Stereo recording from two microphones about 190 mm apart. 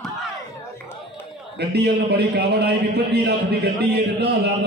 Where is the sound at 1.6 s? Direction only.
60° right (ahead or behind).